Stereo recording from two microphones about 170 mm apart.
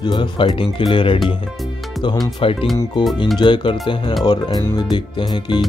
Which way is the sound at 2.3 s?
30° left (ahead or behind).